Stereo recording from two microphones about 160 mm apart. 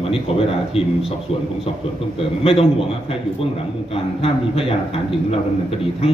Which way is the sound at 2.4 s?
35° left (ahead or behind).